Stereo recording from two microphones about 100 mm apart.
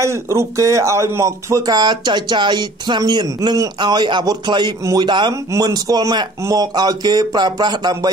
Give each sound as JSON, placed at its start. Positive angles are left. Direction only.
{"t": 0.0, "sound": "speech", "side_deg": -30}
{"t": 5.3, "sound": "speech", "side_deg": -35}